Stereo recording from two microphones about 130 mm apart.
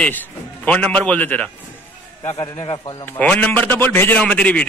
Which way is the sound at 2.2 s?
25° left (ahead or behind).